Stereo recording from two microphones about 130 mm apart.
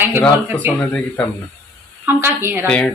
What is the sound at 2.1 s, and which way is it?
Speech, 20° right (ahead or behind).